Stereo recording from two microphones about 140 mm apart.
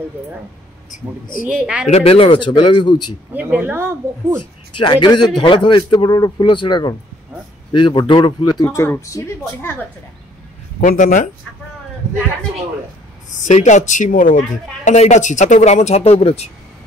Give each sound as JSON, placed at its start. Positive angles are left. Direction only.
{"t": 0.8, "sound": "speech", "side_deg": 80}
{"t": 1.9, "sound": "speech", "side_deg": 45}
{"t": 3.3, "sound": "speech", "side_deg": -10}
{"t": 4.7, "sound": "speech", "side_deg": 35}
{"t": 8.6, "sound": "speech", "side_deg": 15}
{"t": 10.8, "sound": "speech", "side_deg": 65}
{"t": 13.4, "sound": "speech", "side_deg": 55}
{"t": 14.9, "sound": "speech", "side_deg": 60}